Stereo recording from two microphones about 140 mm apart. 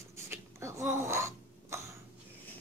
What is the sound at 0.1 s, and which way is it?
Cough, 20° right (ahead or behind).